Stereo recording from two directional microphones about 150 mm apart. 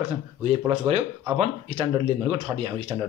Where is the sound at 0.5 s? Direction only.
40° right (ahead or behind).